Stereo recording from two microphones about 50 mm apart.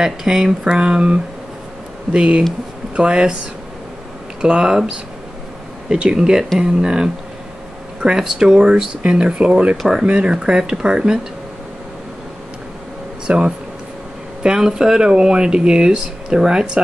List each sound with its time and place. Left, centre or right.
0.0 s speech: centre
4.4 s speech: centre
5.9 s speech: centre
13.3 s speech: centre